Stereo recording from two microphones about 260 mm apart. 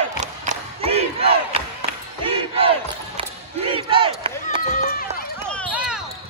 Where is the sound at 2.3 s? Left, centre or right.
Right.